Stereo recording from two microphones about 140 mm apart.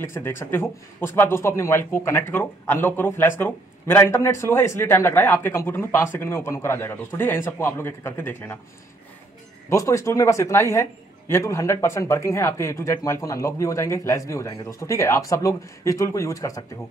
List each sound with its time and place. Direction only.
0.0 s speech: 20° left (ahead or behind)
9.7 s speech: 20° left (ahead or behind)